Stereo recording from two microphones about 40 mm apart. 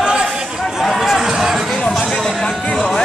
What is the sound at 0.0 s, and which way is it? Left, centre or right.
Chatter, right.